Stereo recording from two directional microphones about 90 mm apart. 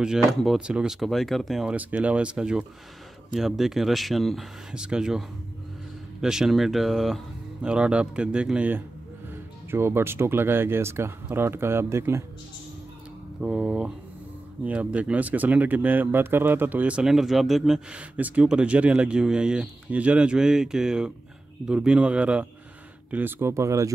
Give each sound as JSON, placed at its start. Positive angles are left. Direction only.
{"t": 0.6, "sound": "speech", "side_deg": -10}
{"t": 1.7, "sound": "speech", "side_deg": -15}
{"t": 6.2, "sound": "speech", "side_deg": -5}
{"t": 7.6, "sound": "speech", "side_deg": -10}
{"t": 9.7, "sound": "speech", "side_deg": -30}
{"t": 13.4, "sound": "speech", "side_deg": -10}
{"t": 23.1, "sound": "speech", "side_deg": -25}